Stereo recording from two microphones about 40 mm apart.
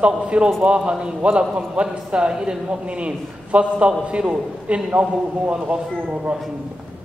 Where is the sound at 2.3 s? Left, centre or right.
Centre.